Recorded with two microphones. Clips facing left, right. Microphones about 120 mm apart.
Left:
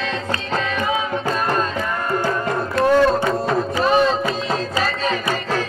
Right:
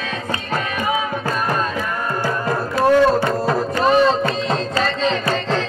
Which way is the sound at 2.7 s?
Centre (ahead or behind).